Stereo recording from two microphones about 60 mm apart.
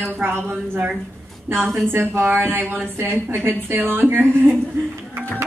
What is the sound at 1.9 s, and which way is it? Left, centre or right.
A woman's voice, right.